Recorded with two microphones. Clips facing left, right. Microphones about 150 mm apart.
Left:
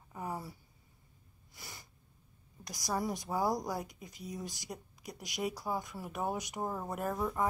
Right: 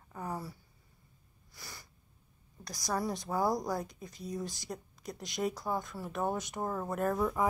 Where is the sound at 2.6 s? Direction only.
15° left (ahead or behind).